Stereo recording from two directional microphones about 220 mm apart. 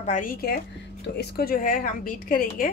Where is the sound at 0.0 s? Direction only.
35° left (ahead or behind).